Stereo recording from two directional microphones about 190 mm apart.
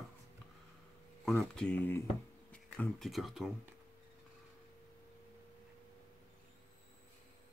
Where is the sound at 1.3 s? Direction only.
Centre (ahead or behind).